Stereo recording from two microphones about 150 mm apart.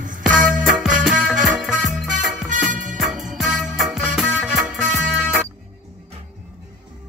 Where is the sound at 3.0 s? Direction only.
Centre (ahead or behind).